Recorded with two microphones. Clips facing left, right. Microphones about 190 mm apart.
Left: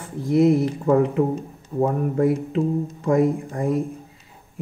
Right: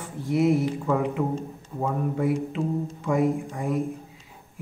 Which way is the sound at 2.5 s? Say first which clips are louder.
Left 5 dB; 40° left (ahead or behind).